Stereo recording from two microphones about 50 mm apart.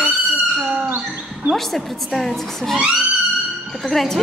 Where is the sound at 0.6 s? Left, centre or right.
Right.